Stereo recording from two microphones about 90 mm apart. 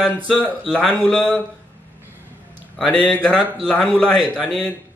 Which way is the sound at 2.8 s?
10° left (ahead or behind).